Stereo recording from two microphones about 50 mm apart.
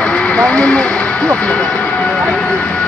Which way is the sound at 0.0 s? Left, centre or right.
Left.